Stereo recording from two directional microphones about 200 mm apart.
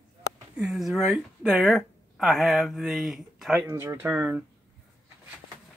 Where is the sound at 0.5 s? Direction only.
5° right (ahead or behind).